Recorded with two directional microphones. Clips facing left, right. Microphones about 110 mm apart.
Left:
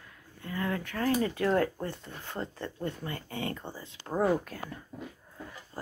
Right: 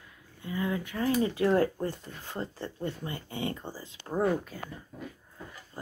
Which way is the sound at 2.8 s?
25° right (ahead or behind).